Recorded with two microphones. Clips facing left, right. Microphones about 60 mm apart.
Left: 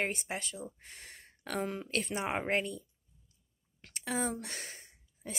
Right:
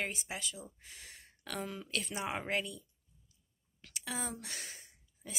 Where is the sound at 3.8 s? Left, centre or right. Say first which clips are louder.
Left 6 dB; left.